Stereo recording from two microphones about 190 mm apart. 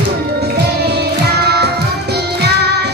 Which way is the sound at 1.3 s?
60° right (ahead or behind).